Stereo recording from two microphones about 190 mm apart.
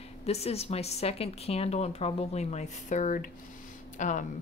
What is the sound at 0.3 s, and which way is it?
Speech, 35° left (ahead or behind).